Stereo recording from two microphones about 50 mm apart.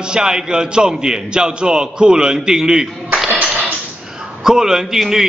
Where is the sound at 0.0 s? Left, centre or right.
Centre.